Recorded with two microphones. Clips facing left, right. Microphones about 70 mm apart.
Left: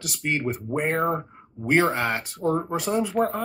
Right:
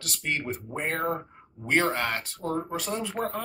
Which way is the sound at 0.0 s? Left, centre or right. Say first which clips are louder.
Left 5 dB; centre.